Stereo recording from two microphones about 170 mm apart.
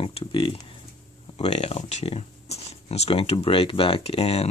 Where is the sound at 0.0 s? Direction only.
30° left (ahead or behind).